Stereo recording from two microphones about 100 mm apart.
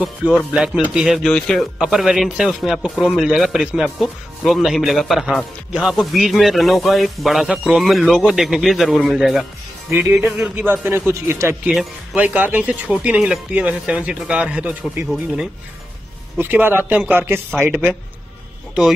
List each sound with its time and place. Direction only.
0.5 s speech: 5° right (ahead or behind)
1.8 s speech: 5° right (ahead or behind)
9.8 s speech: 25° right (ahead or behind)
10.2 s speech: 5° right (ahead or behind)
10.6 s speech: 20° right (ahead or behind)
11.7 s speech: centre (ahead or behind)
12.2 s speech: 15° right (ahead or behind)
16.3 s speech: 20° right (ahead or behind)